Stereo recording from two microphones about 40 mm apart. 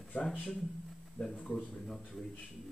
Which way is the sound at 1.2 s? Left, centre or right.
Left.